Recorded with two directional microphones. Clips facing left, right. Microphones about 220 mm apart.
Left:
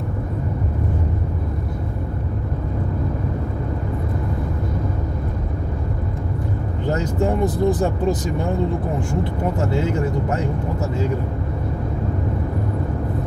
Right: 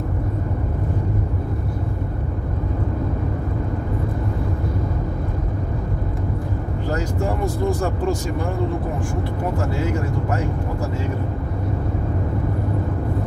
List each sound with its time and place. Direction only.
6.9 s speech: 20° left (ahead or behind)